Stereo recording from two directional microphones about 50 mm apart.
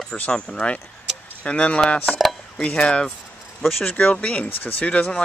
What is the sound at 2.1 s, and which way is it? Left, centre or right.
Dishes, centre.